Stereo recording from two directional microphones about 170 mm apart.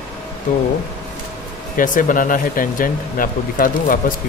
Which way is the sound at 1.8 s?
55° left (ahead or behind).